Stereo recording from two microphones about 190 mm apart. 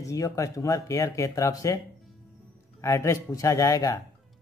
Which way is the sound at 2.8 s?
15° left (ahead or behind).